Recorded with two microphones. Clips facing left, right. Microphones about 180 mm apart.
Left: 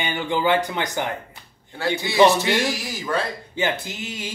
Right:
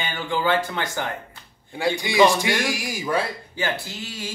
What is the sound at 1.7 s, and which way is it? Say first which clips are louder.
A man's voice: left 1 dB; 15° right (ahead or behind).